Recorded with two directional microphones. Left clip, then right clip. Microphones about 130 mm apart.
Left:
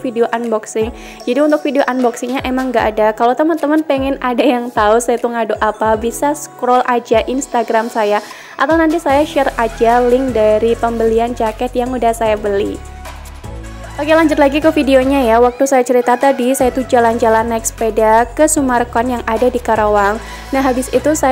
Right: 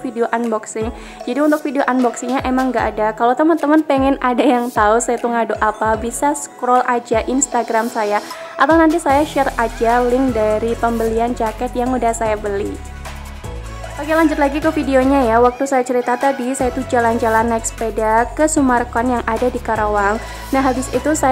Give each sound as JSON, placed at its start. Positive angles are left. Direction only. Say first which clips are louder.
{"t": 0.0, "sound": "speech", "louder": "left 3 dB", "side_deg": 10}
{"t": 2.0, "sound": "a woman's voice", "louder": "left 2 dB", "side_deg": 0}
{"t": 2.7, "sound": "a woman's voice", "louder": "left 5 dB", "side_deg": 15}
{"t": 8.6, "sound": "a woman's voice", "louder": "even", "side_deg": 0}
{"t": 13.9, "sound": "speech", "louder": "left 4 dB", "side_deg": 25}
{"t": 21.0, "sound": "speech", "louder": "left 1 dB", "side_deg": 10}